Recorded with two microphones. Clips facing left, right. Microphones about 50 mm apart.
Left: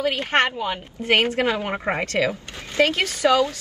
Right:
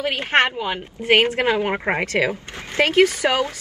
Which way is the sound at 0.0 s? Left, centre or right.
Right.